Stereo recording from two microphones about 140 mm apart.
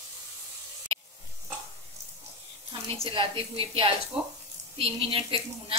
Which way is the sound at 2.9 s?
40° right (ahead or behind).